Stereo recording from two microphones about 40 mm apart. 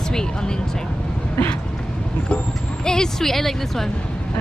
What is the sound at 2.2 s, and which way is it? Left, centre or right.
Speech, left.